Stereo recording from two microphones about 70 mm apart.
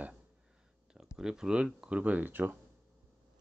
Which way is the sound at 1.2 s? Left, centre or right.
Centre.